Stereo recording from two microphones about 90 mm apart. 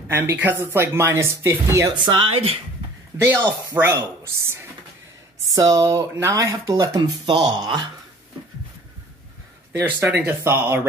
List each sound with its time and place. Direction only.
0.1 s speech: 25° right (ahead or behind)
2.0 s speech: 75° right (ahead or behind)
3.1 s speech: 25° right (ahead or behind)
5.5 s speech: 40° right (ahead or behind)
7.0 s speech: 55° right (ahead or behind)
9.8 s speech: 20° right (ahead or behind)